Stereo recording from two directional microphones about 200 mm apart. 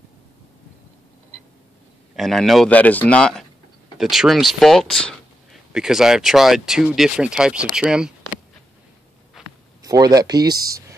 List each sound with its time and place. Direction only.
2.1 s speech: centre (ahead or behind)
9.4 s a sound: centre (ahead or behind)
9.8 s speech: 20° right (ahead or behind)